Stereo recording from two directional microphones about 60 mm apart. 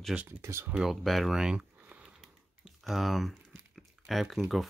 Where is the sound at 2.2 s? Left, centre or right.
Centre.